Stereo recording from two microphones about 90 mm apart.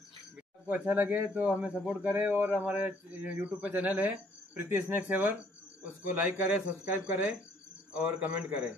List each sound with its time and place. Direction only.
0.7 s speech: 20° right (ahead or behind)